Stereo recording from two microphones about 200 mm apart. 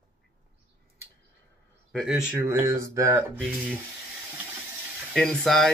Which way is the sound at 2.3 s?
15° right (ahead or behind).